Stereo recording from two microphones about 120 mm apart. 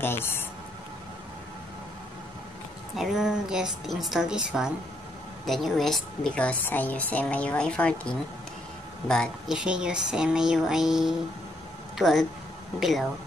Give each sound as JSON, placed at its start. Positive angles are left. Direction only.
{"t": 0.0, "sound": "speech", "side_deg": 20}
{"t": 3.0, "sound": "a woman's voice", "side_deg": 0}
{"t": 9.6, "sound": "a woman's voice", "side_deg": -5}